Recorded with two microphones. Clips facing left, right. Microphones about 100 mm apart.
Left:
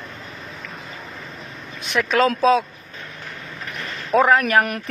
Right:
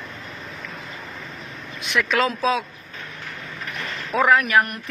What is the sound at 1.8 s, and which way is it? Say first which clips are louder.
Speech: left 3 dB; 35° left (ahead or behind).